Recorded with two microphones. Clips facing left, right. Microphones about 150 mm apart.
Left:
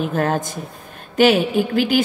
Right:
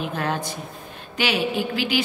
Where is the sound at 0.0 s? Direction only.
45° left (ahead or behind).